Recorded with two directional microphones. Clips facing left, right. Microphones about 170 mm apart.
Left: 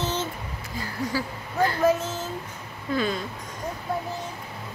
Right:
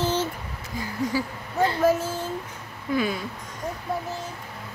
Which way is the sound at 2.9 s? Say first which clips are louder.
Right 1 dB; 10° right (ahead or behind).